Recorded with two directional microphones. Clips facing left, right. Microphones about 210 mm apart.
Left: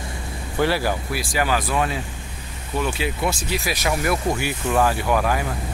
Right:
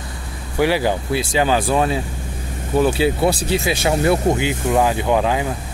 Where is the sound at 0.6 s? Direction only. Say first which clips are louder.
Right 4 dB; 15° right (ahead or behind).